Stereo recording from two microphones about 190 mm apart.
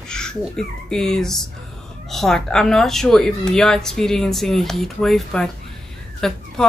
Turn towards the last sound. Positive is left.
turn(degrees=5)  # may be behind; listen again after turning